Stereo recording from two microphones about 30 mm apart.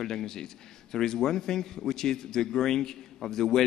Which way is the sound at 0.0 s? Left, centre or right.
Centre.